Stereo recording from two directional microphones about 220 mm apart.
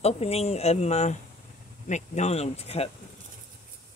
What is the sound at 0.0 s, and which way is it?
Speech, 30° left (ahead or behind).